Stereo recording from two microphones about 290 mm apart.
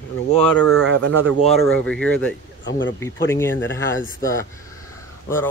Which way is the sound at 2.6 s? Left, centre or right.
Left.